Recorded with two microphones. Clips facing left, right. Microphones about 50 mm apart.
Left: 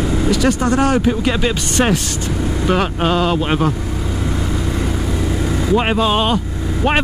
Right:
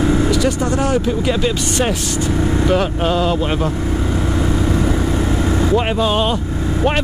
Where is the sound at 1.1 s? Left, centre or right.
Centre.